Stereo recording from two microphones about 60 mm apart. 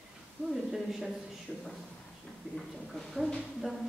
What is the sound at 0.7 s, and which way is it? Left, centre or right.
Speech, centre.